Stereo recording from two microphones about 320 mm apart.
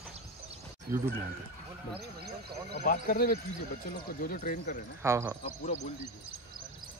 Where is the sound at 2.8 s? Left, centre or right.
Left.